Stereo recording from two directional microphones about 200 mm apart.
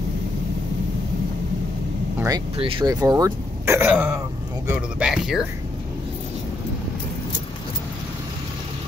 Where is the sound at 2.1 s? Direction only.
20° right (ahead or behind); by 5.4 s centre (ahead or behind).